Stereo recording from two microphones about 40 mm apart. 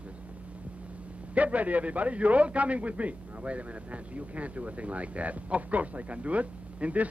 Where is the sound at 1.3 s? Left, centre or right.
Right.